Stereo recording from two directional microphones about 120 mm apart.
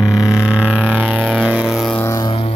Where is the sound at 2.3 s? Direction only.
50° left (ahead or behind).